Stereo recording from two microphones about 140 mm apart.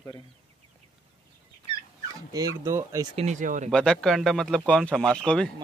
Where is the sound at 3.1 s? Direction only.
55° right (ahead or behind).